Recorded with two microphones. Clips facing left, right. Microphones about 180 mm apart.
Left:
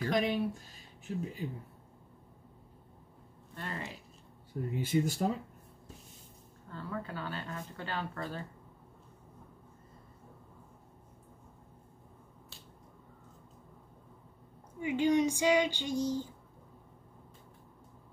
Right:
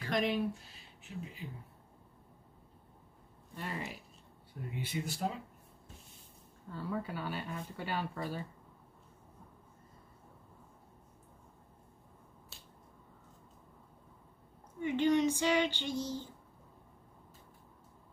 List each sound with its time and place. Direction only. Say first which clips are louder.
0.1 s speech: left 1 dB; centre (ahead or behind)
0.6 s a sound: left 3 dB; 45° left (ahead or behind)
3.5 s speech: even; 10° right (ahead or behind)
4.6 s speech: left 9 dB; 45° left (ahead or behind)
6.7 s speech: right 2 dB; 10° right (ahead or behind)
14.8 s female singing: left 1 dB; 10° left (ahead or behind)